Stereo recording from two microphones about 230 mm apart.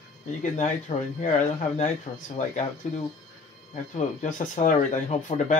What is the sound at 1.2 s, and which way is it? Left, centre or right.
Speech, left.